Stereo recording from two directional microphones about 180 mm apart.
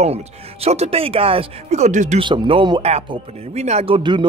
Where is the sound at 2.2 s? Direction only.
25° right (ahead or behind).